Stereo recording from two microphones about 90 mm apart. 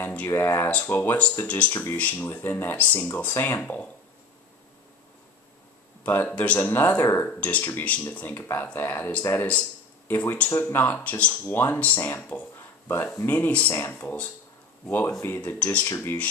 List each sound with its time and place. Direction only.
0.0 s a sound: 20° left (ahead or behind)
0.3 s speech: 30° left (ahead or behind)
6.0 s speech: 20° left (ahead or behind)
7.2 s speech: 15° left (ahead or behind)
9.5 s speech: 15° left (ahead or behind)
12.5 s a sound: 25° left (ahead or behind)
13.2 s speech: 20° left (ahead or behind)
15.2 s speech: 20° left (ahead or behind)
15.9 s speech: 30° left (ahead or behind)